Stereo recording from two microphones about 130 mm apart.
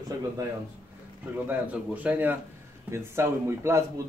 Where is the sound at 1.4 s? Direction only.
10° right (ahead or behind).